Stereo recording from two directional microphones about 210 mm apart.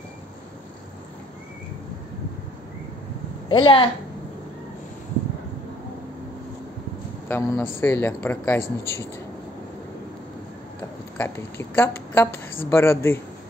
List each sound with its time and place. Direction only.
3.4 s a woman's voice: 25° left (ahead or behind)
7.2 s speech: 10° left (ahead or behind)
11.1 s speech: 10° left (ahead or behind)